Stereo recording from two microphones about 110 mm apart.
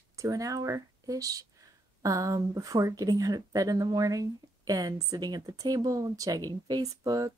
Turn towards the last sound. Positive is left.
turn(degrees=-35)  # may be behind; listen again after turning